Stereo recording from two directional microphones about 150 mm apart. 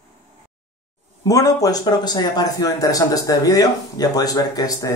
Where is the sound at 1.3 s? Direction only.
25° left (ahead or behind).